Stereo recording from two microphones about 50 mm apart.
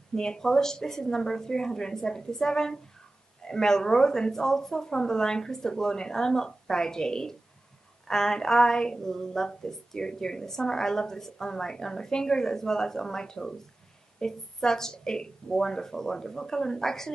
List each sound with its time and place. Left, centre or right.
0.1 s a woman's voice: centre